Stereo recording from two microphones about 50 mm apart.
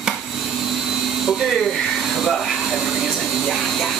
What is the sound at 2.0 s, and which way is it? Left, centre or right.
Vacuum cleaner, centre.